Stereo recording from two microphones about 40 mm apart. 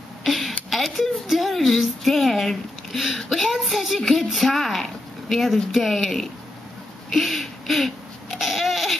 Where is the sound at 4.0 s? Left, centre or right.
Centre.